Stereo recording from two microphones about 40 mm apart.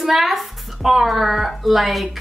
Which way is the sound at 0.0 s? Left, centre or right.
Centre.